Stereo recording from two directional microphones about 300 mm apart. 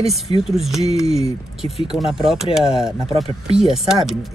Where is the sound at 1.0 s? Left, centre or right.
Right.